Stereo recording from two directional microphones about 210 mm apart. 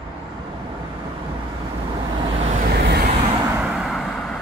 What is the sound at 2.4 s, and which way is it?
Vehicle, 35° right (ahead or behind).